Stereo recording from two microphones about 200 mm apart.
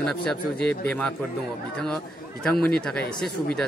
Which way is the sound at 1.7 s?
5° left (ahead or behind).